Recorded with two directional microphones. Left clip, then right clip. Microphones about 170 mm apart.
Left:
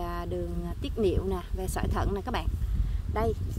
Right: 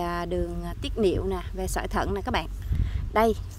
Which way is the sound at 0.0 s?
35° right (ahead or behind).